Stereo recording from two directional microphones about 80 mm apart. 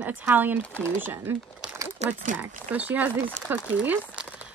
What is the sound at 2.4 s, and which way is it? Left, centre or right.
Speech, centre.